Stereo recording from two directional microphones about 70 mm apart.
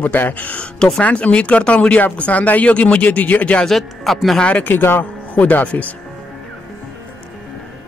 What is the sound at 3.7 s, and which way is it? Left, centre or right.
Speech, centre.